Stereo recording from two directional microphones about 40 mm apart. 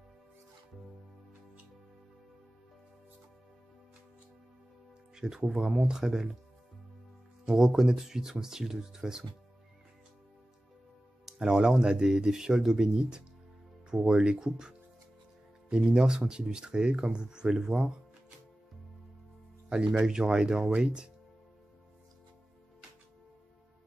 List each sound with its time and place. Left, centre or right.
5.1 s speech: centre
7.4 s speech: centre
11.3 s speech: centre
19.7 s speech: right